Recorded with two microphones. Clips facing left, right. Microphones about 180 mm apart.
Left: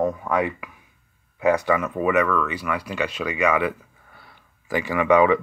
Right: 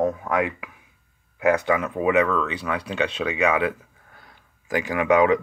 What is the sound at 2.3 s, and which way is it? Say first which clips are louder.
Speech: left 1 dB; 25° right (ahead or behind).